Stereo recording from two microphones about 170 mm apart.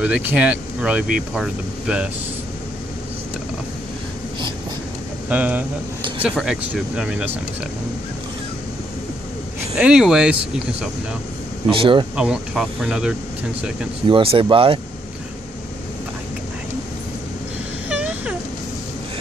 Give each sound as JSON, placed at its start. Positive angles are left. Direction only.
{"t": 0.0, "sound": "speech", "side_deg": -10}
{"t": 5.3, "sound": "speech", "side_deg": -10}
{"t": 9.8, "sound": "speech", "side_deg": -5}
{"t": 11.7, "sound": "speech", "side_deg": -30}
{"t": 12.2, "sound": "speech", "side_deg": -5}
{"t": 14.0, "sound": "speech", "side_deg": -30}
{"t": 17.8, "sound": "vehicle", "side_deg": -5}